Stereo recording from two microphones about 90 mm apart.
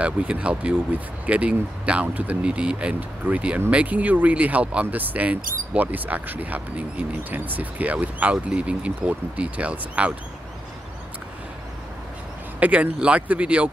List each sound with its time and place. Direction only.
0.0 s speech: 15° right (ahead or behind)
12.5 s speech: 15° right (ahead or behind)